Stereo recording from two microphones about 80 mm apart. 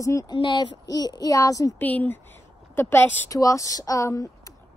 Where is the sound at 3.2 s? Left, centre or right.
Left.